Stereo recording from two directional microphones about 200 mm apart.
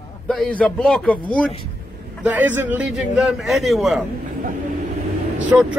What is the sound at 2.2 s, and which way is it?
Speech, 10° right (ahead or behind).